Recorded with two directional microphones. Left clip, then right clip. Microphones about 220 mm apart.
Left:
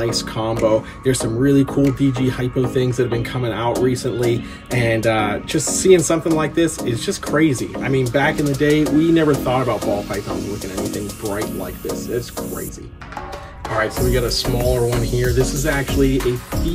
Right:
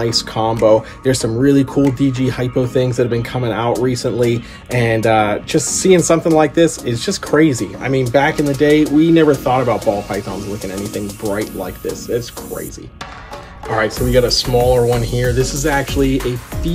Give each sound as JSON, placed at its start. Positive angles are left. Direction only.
{"t": 0.0, "sound": "speech", "side_deg": -20}
{"t": 13.7, "sound": "speech", "side_deg": -10}